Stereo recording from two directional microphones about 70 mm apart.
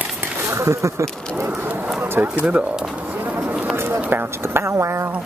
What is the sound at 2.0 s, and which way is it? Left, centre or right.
Pigeon, right.